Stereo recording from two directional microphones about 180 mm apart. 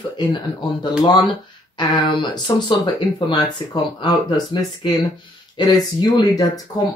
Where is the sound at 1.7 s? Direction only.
25° left (ahead or behind).